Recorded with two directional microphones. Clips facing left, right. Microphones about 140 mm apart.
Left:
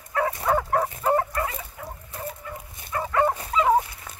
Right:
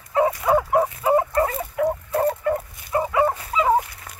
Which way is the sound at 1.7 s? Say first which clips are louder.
Right 17 dB; 70° right (ahead or behind).